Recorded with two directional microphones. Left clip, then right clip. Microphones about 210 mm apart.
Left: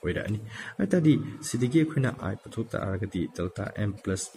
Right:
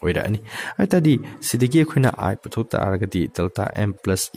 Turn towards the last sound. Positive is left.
turn(degrees=-50)  # may be behind; listen again after turning